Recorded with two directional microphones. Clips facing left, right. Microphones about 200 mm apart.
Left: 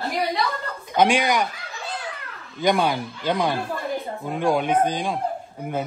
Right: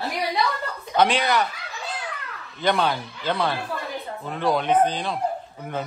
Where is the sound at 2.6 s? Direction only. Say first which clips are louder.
Left 2 dB; 10° left (ahead or behind).